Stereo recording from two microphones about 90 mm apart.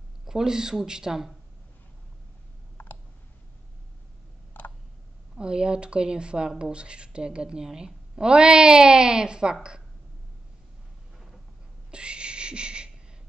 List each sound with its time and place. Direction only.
0.3 s speech: 5° right (ahead or behind)
2.8 s clicking: 25° left (ahead or behind)
4.6 s tick: 20° left (ahead or behind)
5.3 s speech: 10° right (ahead or behind)
11.9 s a sound: 10° right (ahead or behind)